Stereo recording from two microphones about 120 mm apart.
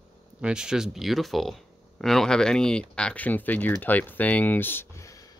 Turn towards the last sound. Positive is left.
turn(degrees=25)  # may be behind; listen again after turning